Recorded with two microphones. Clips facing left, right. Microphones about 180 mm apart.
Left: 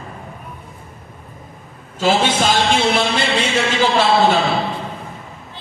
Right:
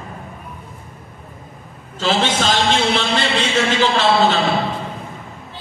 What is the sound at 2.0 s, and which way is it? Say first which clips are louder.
A man's voice: left 2 dB; 10° left (ahead or behind).